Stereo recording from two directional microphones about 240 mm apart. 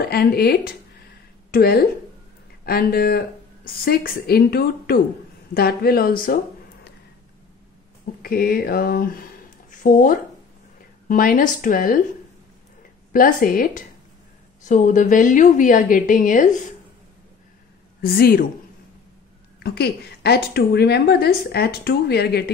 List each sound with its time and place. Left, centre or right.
0.1 s a woman's voice: left
8.2 s a woman's voice: left
13.1 s a woman's voice: left
18.0 s a woman's voice: left
19.6 s a woman's voice: left